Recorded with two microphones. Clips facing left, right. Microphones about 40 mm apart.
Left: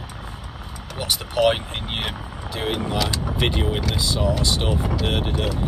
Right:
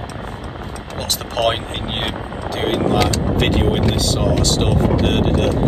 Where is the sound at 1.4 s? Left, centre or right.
Right.